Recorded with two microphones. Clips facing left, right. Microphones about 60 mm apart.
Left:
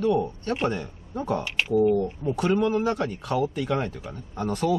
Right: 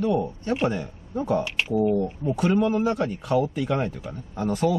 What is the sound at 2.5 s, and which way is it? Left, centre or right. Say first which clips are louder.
Speech: right 1 dB; centre.